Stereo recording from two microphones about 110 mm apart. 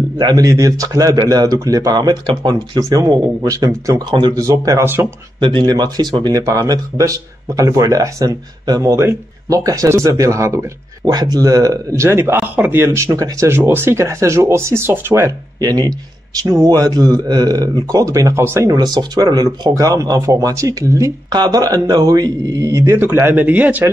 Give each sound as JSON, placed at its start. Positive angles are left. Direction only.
{"t": 0.2, "sound": "speech", "side_deg": -35}
{"t": 5.4, "sound": "speech", "side_deg": -45}
{"t": 15.6, "sound": "speech", "side_deg": -35}
{"t": 22.9, "sound": "speech", "side_deg": -20}